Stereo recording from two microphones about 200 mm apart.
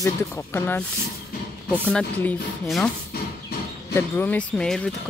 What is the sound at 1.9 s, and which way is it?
Speech, 5° left (ahead or behind).